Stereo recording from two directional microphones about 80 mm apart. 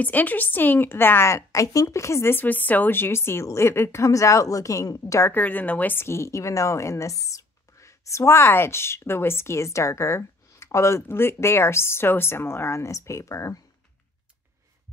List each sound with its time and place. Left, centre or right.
0.0 s a woman's voice: left
5.3 s a woman's voice: left